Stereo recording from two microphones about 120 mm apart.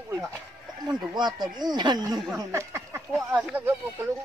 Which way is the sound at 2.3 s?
25° right (ahead or behind).